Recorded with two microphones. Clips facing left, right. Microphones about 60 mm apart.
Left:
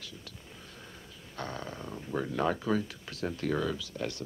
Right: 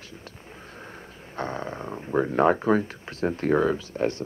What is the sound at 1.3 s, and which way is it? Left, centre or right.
Speech, right.